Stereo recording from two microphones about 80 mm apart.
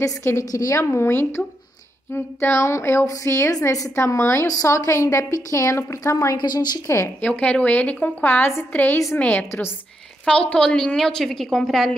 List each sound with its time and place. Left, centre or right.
0.0 s a woman's voice: left
0.5 s a woman's voice: left
3.9 s a woman's voice: left
4.5 s a woman's voice: left
6.3 s a woman's voice: left
7.2 s a woman's voice: centre